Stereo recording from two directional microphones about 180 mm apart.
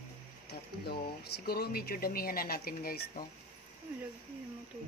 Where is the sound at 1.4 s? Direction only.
60° left (ahead or behind).